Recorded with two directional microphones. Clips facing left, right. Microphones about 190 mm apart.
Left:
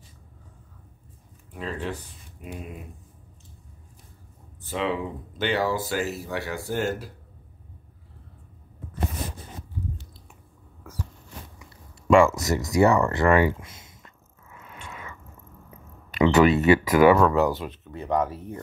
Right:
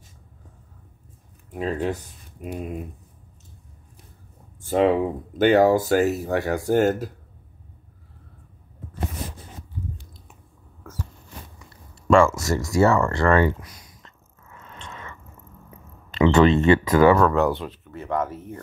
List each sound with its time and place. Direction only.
1.5 s speech: 45° right (ahead or behind)
4.6 s speech: 45° right (ahead or behind)
12.1 s speech: 15° left (ahead or behind)
13.6 s a sound: 25° left (ahead or behind)
14.0 s a sound: 10° left (ahead or behind)
16.4 s speech: 10° left (ahead or behind)
17.4 s speech: centre (ahead or behind)
17.6 s speech: 15° left (ahead or behind)